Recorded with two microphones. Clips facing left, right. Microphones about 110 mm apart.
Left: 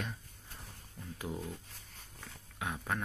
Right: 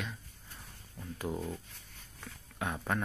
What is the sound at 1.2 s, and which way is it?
Speech, 30° right (ahead or behind).